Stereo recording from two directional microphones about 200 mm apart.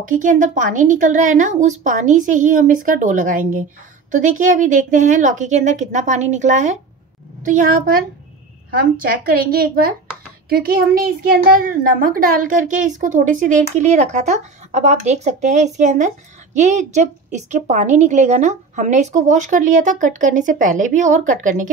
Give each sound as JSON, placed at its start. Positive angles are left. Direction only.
{"t": 0.2, "sound": "a woman's voice", "side_deg": -40}